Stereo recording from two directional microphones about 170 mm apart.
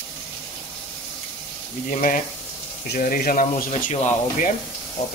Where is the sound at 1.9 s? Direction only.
50° left (ahead or behind).